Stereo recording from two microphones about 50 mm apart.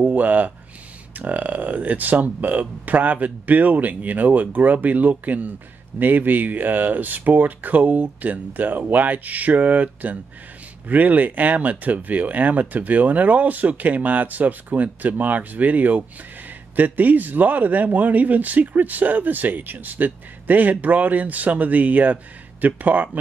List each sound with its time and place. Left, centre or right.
0.0 s speech: right